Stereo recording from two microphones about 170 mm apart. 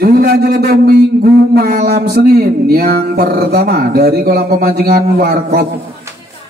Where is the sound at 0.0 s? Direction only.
65° right (ahead or behind).